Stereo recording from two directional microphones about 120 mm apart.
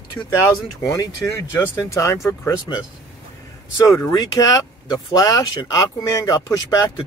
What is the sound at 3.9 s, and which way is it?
Speech, 25° left (ahead or behind).